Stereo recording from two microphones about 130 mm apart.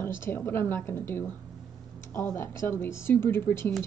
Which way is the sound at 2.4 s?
20° left (ahead or behind).